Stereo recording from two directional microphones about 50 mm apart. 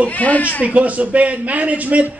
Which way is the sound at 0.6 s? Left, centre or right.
Right.